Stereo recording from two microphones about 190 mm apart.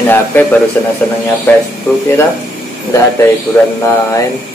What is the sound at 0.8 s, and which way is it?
Speech, 10° left (ahead or behind).